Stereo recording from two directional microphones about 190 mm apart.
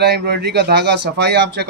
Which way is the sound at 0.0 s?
60° right (ahead or behind).